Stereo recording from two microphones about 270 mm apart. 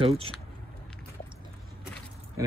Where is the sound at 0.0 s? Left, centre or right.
Right.